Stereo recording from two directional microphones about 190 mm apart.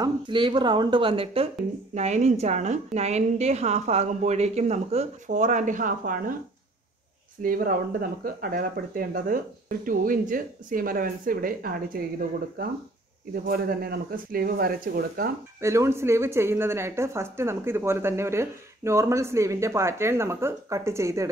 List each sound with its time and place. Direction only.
0.0 s a woman's voice: 25° right (ahead or behind); by 6.3 s 45° right (ahead or behind)
7.4 s speech: 50° right (ahead or behind)
15.6 s a woman's voice: 15° right (ahead or behind)